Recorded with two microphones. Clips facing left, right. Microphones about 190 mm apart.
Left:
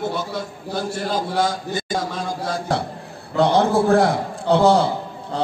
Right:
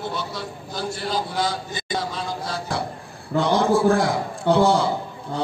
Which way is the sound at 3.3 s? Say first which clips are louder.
Left 2 dB; 65° left (ahead or behind).